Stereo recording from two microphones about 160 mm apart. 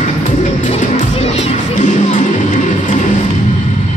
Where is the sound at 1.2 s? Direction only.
40° left (ahead or behind).